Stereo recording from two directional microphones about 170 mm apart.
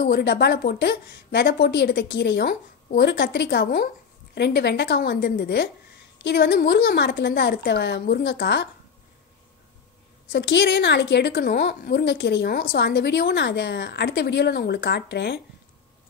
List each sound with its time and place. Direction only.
0.0 s a woman's voice: 65° left (ahead or behind)
4.4 s a woman's voice: 80° left
10.3 s a woman's voice: 75° left (ahead or behind); by 15.4 s 90° left